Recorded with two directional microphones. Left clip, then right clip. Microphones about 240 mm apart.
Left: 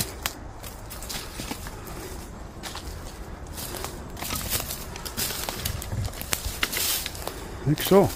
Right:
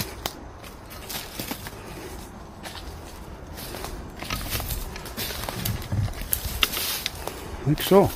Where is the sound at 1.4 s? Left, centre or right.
Right.